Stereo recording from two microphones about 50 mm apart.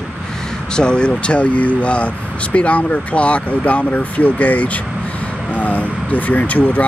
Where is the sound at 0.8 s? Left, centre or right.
Centre.